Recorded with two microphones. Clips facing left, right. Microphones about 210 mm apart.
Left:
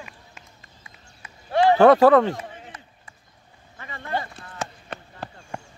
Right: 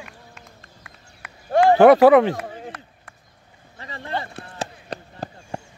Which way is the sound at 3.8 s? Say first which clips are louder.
Even; 30° right (ahead or behind).